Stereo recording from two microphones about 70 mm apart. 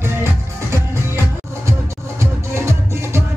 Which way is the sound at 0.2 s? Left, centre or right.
Right.